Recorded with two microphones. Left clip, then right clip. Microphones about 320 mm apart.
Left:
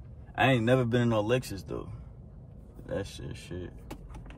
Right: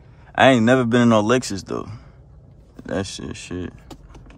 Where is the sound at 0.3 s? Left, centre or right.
Centre.